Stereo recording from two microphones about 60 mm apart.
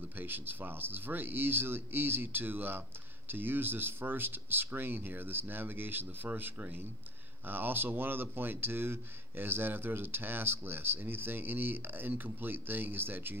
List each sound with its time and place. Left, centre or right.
0.2 s speech: right